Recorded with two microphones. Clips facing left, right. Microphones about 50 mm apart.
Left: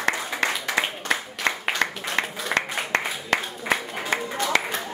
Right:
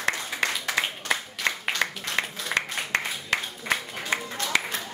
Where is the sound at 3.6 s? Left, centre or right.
Centre.